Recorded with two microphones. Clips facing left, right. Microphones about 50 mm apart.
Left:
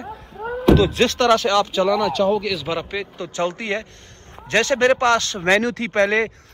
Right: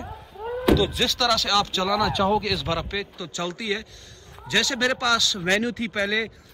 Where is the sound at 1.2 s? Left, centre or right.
Left.